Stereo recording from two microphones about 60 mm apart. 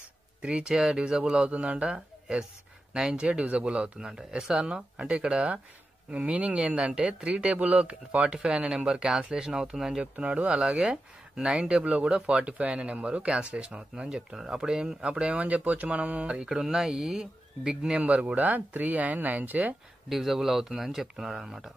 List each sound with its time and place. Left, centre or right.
0.4 s speech: centre
18.0 s speech: right
20.1 s speech: centre